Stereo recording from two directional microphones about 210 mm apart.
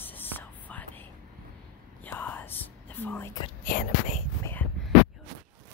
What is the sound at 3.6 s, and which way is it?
Whispering, 40° left (ahead or behind).